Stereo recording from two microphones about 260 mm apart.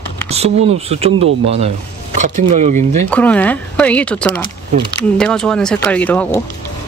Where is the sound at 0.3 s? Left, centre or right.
Right.